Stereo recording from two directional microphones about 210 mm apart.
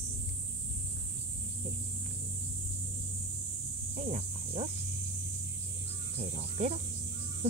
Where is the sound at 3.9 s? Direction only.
35° right (ahead or behind).